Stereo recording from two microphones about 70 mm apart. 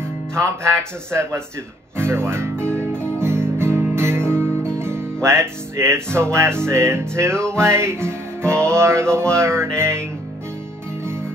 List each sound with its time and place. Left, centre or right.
0.0 s speech: right
2.0 s guitar: right
6.1 s music: right